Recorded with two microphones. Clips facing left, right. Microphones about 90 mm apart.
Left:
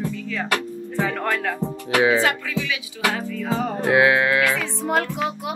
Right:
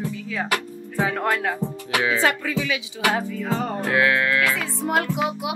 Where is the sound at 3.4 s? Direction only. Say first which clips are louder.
Left 7 dB; centre (ahead or behind).